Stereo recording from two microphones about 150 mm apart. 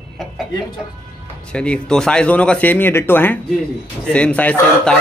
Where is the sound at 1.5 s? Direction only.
5° left (ahead or behind).